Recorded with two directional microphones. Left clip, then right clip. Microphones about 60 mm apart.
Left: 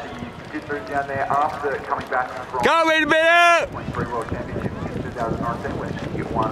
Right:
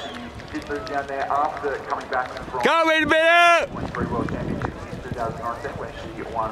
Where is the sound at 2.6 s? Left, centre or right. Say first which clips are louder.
Left 1 dB; centre.